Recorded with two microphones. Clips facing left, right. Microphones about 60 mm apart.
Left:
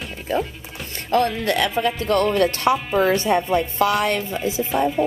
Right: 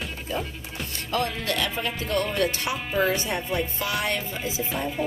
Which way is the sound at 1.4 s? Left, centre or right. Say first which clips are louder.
Left 7 dB; left.